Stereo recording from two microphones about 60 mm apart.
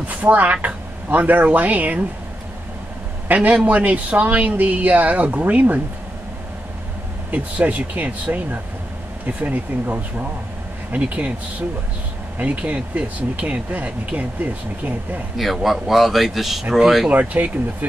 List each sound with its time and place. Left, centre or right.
0.1 s speech: right
3.3 s speech: right
7.2 s speech: right
12.4 s speech: right
15.3 s speech: centre
17.1 s speech: right